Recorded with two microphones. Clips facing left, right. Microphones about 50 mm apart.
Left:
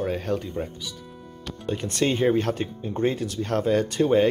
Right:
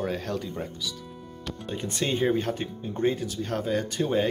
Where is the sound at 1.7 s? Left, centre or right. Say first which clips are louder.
Left 4 dB; left.